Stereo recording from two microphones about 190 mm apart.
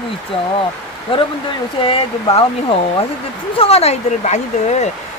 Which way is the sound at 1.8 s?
30° left (ahead or behind).